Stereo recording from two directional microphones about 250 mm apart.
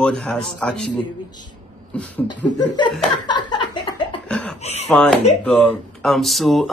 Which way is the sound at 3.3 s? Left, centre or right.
Centre.